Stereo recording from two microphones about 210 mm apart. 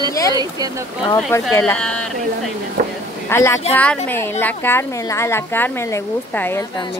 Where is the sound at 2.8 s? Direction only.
40° right (ahead or behind).